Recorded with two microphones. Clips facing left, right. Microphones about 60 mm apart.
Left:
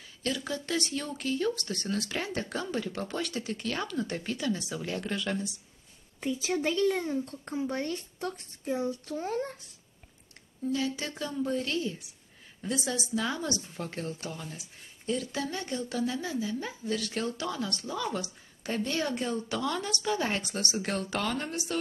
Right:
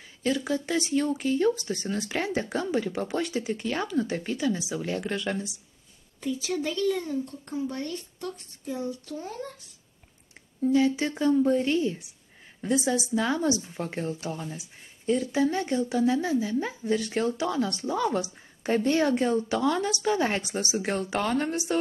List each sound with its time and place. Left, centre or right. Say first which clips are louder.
0.2 s speech: right 6 dB; centre
6.2 s speech: even; left
10.6 s speech: right 8 dB; centre
19.1 s speech: right 7 dB; centre